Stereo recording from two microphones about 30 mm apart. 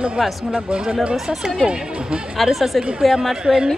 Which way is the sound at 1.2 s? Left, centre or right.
Centre.